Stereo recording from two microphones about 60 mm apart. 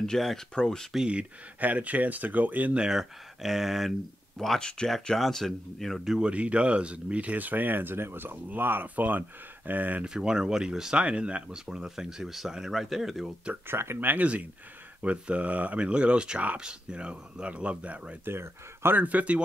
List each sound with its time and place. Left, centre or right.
0.0 s speech: centre
0.9 s speech: centre
1.6 s speech: right
2.8 s speech: centre
4.4 s speech: centre
6.1 s speech: centre
10.0 s speech: centre
13.7 s speech: right
13.9 s speech: right
18.2 s speech: right
18.9 s speech: right